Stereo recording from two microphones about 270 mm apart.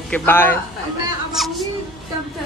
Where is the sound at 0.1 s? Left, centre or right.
Centre.